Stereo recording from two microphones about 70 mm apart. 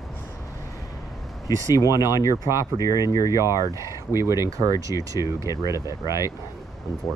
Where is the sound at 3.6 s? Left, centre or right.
Right.